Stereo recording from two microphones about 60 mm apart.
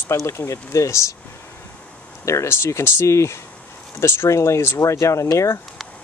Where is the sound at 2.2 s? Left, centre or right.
Left.